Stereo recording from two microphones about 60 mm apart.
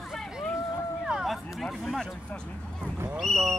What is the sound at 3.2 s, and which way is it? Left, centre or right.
Speech, centre.